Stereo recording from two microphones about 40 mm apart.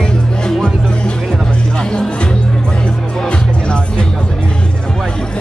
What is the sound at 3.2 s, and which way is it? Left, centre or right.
Music, left.